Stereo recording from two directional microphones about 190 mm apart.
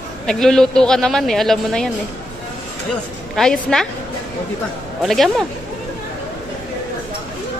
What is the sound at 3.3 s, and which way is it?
Speech, 5° left (ahead or behind).